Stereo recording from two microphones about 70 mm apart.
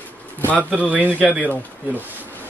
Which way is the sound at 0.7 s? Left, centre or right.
Right.